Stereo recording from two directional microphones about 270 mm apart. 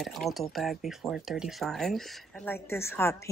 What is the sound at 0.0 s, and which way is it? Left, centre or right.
Speech, centre.